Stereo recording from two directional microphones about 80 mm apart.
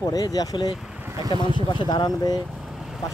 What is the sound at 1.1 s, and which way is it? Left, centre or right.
Speech, right.